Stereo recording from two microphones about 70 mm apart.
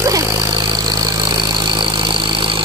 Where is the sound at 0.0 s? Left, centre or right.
Right.